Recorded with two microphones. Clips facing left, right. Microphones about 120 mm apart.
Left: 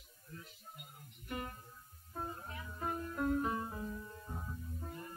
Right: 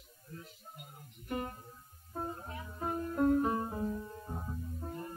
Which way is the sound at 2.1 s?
30° right (ahead or behind).